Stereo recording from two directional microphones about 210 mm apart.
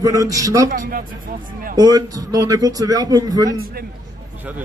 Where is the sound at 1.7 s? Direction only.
15° right (ahead or behind).